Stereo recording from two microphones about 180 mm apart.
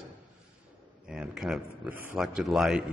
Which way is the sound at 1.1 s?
Centre (ahead or behind).